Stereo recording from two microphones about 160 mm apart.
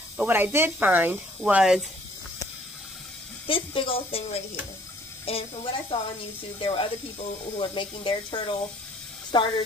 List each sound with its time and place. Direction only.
0.2 s speech: 15° right (ahead or behind)
3.4 s speech: 35° left (ahead or behind)
5.2 s speech: 35° left (ahead or behind)